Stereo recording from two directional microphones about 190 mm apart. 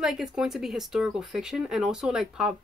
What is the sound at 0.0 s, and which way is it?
A woman's voice, 5° right (ahead or behind).